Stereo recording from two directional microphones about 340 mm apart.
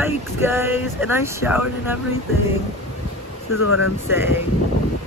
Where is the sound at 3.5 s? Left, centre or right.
Left.